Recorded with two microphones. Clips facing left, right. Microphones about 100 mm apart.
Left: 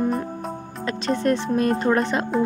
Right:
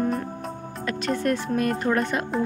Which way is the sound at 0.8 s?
25° left (ahead or behind).